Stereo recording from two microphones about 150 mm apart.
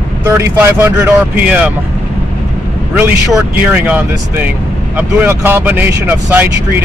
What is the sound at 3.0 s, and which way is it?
Speech, 15° right (ahead or behind).